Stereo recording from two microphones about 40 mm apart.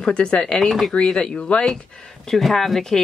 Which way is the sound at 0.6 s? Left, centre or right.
Centre.